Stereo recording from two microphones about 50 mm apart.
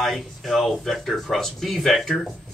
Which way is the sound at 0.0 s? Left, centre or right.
Centre.